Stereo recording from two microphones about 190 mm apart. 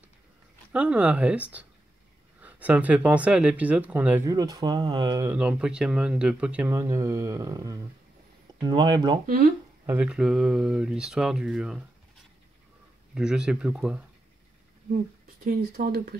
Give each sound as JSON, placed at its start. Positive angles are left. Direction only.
{"t": 0.7, "sound": "speech", "side_deg": -5}
{"t": 9.2, "sound": "speech", "side_deg": -50}
{"t": 9.8, "sound": "speech", "side_deg": -5}
{"t": 13.1, "sound": "speech", "side_deg": -5}
{"t": 15.4, "sound": "speech", "side_deg": -50}